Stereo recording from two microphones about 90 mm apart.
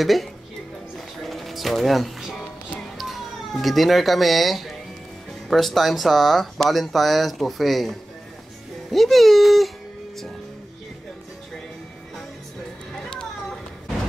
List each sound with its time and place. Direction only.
0.0 s speech: centre (ahead or behind)
0.9 s music: centre (ahead or behind)
3.0 s speech: centre (ahead or behind)